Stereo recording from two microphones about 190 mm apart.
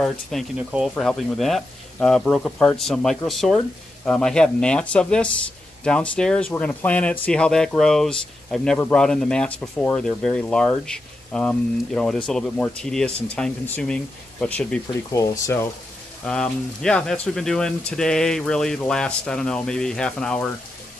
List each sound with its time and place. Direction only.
0.0 s speech: centre (ahead or behind)
15.0 s speech: 15° left (ahead or behind)
16.3 s speech: 5° left (ahead or behind)